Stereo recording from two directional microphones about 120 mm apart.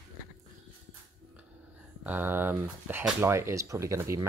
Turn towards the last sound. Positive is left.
turn(degrees=-25)  # may be behind; listen again after turning